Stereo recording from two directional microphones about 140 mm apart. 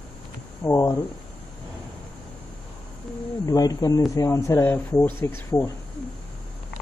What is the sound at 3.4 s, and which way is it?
Speech, 25° left (ahead or behind).